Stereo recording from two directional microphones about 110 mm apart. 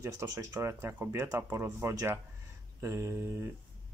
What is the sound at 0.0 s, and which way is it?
Speech, 25° right (ahead or behind).